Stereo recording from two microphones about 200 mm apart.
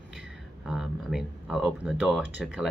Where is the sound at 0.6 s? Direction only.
Centre (ahead or behind).